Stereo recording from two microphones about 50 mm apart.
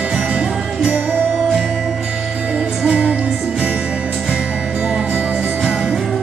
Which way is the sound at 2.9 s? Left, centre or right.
Right.